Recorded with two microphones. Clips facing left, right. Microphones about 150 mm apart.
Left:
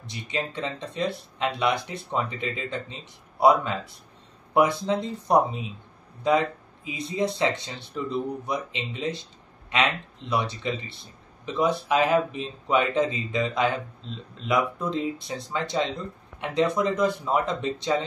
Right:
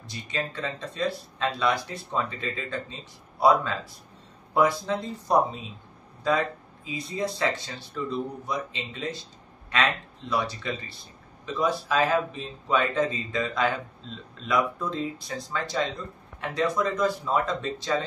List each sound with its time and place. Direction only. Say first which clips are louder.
0.0 s speech: left 1 dB; 20° left (ahead or behind)